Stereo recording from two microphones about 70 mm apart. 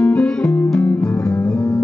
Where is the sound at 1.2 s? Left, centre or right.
Left.